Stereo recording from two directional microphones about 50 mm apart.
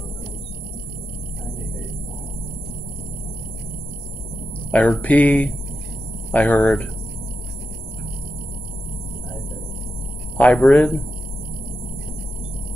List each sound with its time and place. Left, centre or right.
4.6 s speech: left
10.3 s speech: left